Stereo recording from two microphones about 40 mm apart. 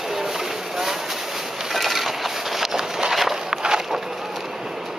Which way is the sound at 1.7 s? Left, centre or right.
Centre.